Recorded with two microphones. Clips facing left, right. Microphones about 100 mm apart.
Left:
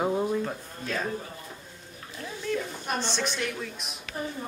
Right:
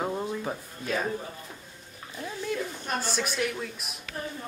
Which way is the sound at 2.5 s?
5° right (ahead or behind).